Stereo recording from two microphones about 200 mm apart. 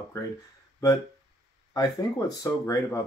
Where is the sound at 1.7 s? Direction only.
20° left (ahead or behind).